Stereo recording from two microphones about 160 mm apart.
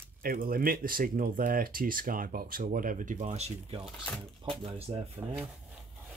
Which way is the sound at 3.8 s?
5° left (ahead or behind).